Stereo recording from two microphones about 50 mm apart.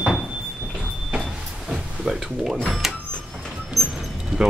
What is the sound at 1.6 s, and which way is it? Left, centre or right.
Speech, centre.